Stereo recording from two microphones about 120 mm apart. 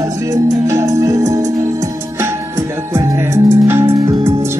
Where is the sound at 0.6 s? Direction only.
30° right (ahead or behind).